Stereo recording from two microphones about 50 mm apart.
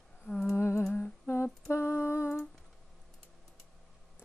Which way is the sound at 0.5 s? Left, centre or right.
Left.